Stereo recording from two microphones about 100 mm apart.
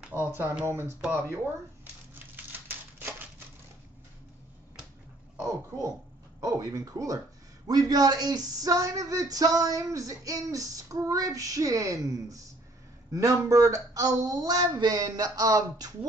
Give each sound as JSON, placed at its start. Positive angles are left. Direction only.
{"t": 0.1, "sound": "speech", "side_deg": -10}
{"t": 0.7, "sound": "speech", "side_deg": -25}
{"t": 5.7, "sound": "speech", "side_deg": -30}